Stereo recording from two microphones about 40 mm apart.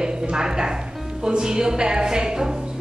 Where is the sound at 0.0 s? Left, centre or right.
Centre.